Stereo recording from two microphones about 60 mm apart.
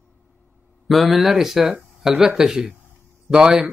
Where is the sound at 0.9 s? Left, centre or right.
Centre.